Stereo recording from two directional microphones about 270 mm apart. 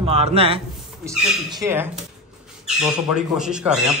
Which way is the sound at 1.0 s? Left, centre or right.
Centre.